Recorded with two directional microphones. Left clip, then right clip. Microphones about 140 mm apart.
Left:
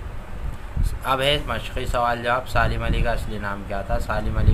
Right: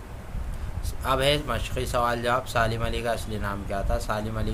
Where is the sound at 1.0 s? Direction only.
40° right (ahead or behind).